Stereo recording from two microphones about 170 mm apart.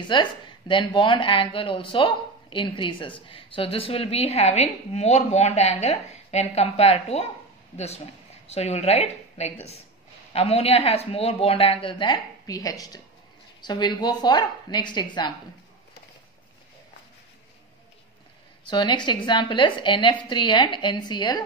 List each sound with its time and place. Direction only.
0.0 s a woman's voice: 25° left (ahead or behind)
18.7 s a woman's voice: 25° left (ahead or behind)